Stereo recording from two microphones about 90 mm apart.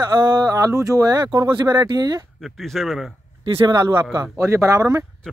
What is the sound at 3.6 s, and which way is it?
Speech, 55° right (ahead or behind).